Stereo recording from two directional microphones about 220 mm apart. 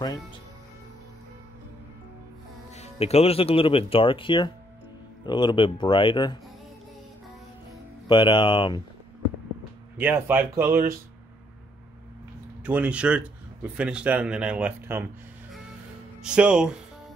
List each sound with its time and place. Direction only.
2.7 s speech: 30° left (ahead or behind)
8.1 s speech: 20° left (ahead or behind)
9.9 s speech: 5° right (ahead or behind)
12.6 s a man's voice: 5° right (ahead or behind)
16.2 s a man's voice: 5° right (ahead or behind)